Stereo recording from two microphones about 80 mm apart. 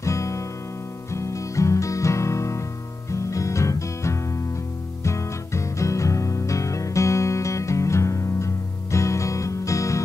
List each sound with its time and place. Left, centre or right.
0.0 s music: left